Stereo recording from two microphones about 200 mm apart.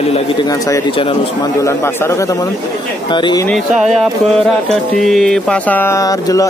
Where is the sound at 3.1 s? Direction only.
20° left (ahead or behind).